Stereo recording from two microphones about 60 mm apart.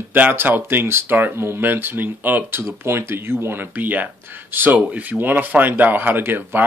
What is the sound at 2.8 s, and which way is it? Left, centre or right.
Speech, right.